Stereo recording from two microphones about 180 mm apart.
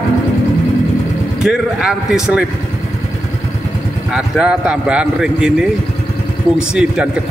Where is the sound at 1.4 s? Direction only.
5° right (ahead or behind).